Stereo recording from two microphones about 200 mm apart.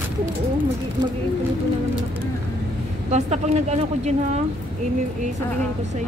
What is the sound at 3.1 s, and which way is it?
Speech, 35° right (ahead or behind).